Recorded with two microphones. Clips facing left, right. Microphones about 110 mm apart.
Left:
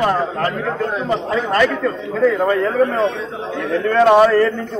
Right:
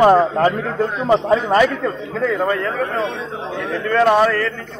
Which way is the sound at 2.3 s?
10° left (ahead or behind).